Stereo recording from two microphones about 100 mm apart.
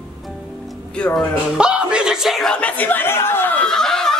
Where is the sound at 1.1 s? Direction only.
10° right (ahead or behind); by 3.6 s 20° left (ahead or behind).